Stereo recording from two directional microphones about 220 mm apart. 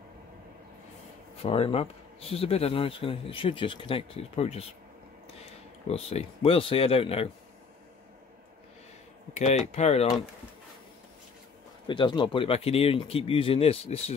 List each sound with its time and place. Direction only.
1.4 s a man's voice: 25° left (ahead or behind)
9.3 s speech: 30° left (ahead or behind)
11.9 s a man's voice: 20° left (ahead or behind)